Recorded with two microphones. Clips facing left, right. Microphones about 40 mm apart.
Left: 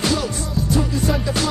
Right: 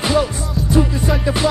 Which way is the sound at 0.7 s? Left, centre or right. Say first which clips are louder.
Right 4 dB; right.